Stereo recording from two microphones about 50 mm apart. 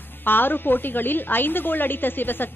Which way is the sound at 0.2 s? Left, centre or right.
Left.